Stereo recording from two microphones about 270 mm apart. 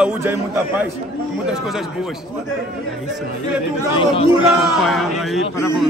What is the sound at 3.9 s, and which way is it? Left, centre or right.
Speech, centre.